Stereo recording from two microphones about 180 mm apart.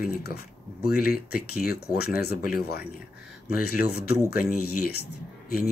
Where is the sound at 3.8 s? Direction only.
60° left (ahead or behind).